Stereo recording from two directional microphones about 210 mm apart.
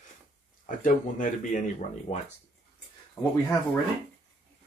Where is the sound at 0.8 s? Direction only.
40° left (ahead or behind).